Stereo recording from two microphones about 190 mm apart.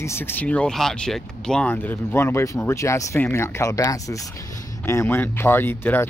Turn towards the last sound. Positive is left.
turn(degrees=10)  # may be behind; listen again after turning